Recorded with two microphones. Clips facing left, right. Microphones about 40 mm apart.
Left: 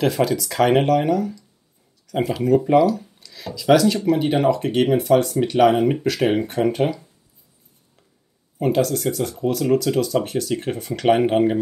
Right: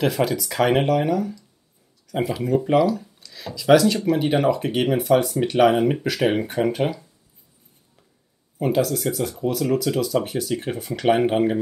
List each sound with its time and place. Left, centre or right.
0.0 s speech: centre
8.5 s speech: centre